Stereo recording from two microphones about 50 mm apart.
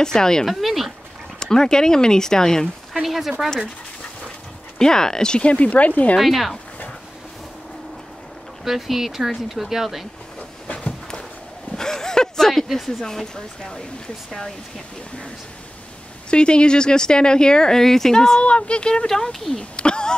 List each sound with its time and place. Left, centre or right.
0.0 s speech: centre
0.5 s speech: centre
1.4 s speech: centre
2.9 s speech: centre
4.7 s speech: centre; by 6.1 s left
6.1 s speech: centre
8.6 s speech: centre
11.7 s speech: centre
16.3 s speech: centre
18.4 s speech: left